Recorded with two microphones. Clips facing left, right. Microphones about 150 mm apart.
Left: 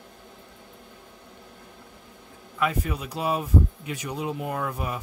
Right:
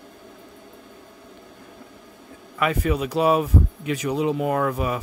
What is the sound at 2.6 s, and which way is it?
Speech, 85° right.